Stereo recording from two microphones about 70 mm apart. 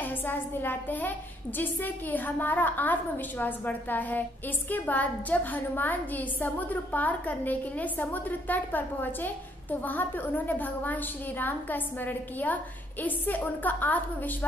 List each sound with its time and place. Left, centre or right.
0.0 s a woman's voice: left